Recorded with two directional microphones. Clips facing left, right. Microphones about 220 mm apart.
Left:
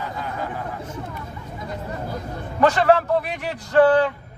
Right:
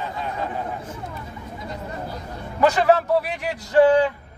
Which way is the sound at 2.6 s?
10° right (ahead or behind).